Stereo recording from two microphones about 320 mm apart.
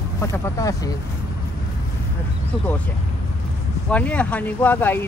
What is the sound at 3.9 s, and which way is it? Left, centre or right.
Speech, centre.